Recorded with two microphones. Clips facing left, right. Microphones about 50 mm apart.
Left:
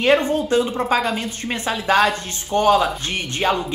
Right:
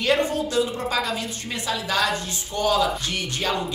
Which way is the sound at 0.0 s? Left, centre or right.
Left.